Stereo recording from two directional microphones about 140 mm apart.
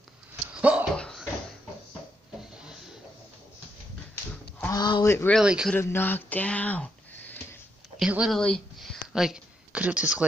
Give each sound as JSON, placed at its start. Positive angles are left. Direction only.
{"t": 0.5, "sound": "dog", "side_deg": -10}
{"t": 0.9, "sound": "a sound", "side_deg": 5}
{"t": 4.1, "sound": "livestock", "side_deg": 15}
{"t": 4.7, "sound": "speech", "side_deg": 30}
{"t": 5.0, "sound": "speech", "side_deg": 20}
{"t": 5.3, "sound": "speech", "side_deg": -5}
{"t": 5.8, "sound": "speech", "side_deg": 15}
{"t": 8.0, "sound": "speech", "side_deg": -5}
{"t": 8.4, "sound": "a sound", "side_deg": 5}